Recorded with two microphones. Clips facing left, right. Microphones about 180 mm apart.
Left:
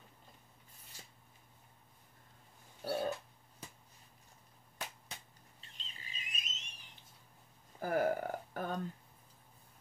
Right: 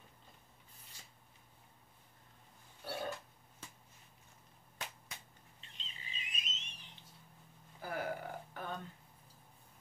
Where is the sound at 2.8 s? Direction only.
35° left (ahead or behind).